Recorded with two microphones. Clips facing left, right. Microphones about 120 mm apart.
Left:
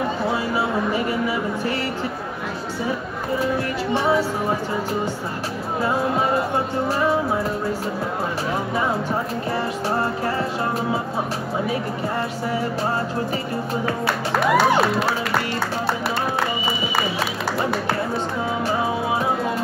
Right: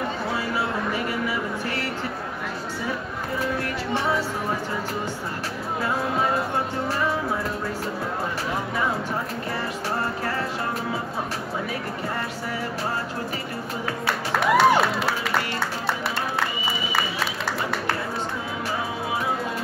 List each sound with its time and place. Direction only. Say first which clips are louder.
0.3 s a sound: left 4 dB; 25° left (ahead or behind)
3.9 s music: left 5 dB; centre (ahead or behind)
13.8 s music: left 4 dB; centre (ahead or behind)